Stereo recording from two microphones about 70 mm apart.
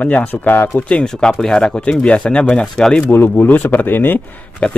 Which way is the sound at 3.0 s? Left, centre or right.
Left.